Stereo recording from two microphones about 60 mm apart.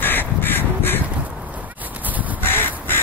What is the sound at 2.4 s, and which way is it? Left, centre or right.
Crow, left.